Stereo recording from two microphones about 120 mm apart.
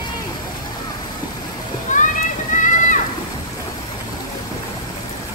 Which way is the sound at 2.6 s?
90° left.